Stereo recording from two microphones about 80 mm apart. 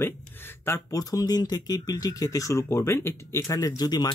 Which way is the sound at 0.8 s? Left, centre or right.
Left.